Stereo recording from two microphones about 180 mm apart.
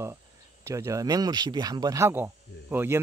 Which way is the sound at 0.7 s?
15° right (ahead or behind).